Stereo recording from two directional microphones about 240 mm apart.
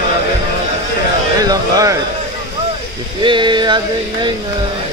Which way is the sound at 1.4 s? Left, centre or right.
Centre.